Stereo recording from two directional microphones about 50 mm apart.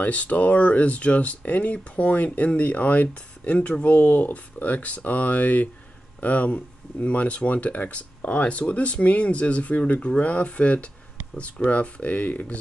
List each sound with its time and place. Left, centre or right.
0.0 s speech: left